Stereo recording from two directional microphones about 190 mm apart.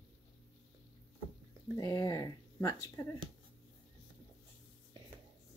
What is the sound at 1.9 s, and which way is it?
Speech, 15° left (ahead or behind).